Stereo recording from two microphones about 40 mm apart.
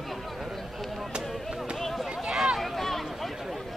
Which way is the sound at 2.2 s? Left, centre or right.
Centre.